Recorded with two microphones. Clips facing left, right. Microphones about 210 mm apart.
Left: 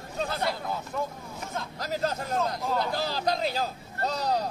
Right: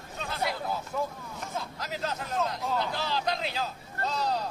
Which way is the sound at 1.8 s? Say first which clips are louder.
Left 7 dB; 40° left (ahead or behind).